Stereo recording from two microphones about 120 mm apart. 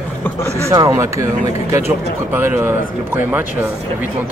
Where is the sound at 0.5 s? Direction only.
25° right (ahead or behind).